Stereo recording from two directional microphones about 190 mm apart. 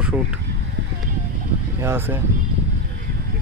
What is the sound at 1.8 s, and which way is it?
Speech, 10° right (ahead or behind).